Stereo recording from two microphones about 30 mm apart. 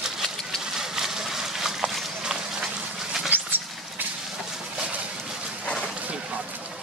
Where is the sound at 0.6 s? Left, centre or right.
Centre.